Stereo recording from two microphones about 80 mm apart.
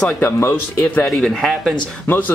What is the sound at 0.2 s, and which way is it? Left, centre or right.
Speech, left.